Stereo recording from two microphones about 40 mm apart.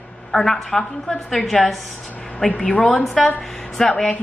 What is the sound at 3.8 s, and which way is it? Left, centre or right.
Speech, centre.